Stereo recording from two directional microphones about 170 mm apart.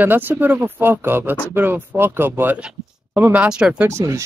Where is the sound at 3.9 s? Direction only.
15° right (ahead or behind).